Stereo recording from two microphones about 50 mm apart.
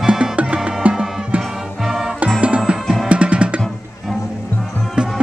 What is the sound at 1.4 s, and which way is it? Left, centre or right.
Music, centre.